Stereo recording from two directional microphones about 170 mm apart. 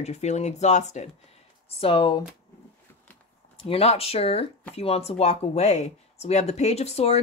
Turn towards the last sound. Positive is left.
turn(degrees=40)  # may be behind; listen again after turning